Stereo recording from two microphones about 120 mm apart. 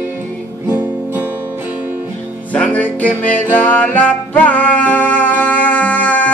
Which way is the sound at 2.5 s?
10° left (ahead or behind).